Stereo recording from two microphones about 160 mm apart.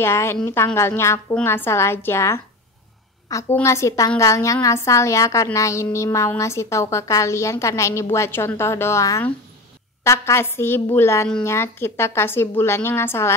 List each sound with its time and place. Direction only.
0.0 s a woman's voice: 15° left (ahead or behind)